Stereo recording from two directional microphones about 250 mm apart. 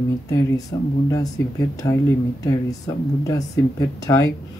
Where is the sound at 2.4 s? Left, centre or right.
Centre.